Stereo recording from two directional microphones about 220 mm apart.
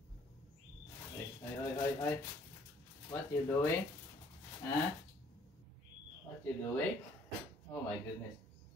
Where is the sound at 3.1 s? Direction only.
10° left (ahead or behind).